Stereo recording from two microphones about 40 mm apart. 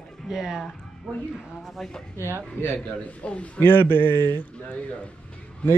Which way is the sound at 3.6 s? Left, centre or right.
Left.